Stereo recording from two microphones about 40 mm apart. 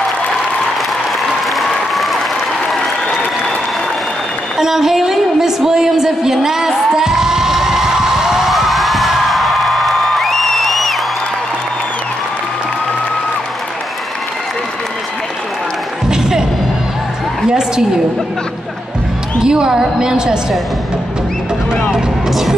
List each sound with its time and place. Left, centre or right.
1.5 s applause: centre
4.6 s a woman's voice: centre
6.9 s music: centre
8.5 s music: centre
16.1 s music: centre
17.5 s a sound: centre
19.4 s a woman's voice: centre
22.3 s music: centre